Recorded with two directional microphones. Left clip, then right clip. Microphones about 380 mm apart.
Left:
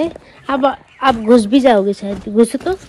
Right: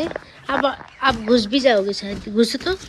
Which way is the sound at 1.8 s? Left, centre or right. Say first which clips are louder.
Left 6 dB; left.